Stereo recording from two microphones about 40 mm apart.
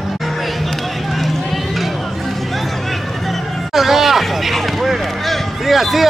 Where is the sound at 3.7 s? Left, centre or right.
Centre.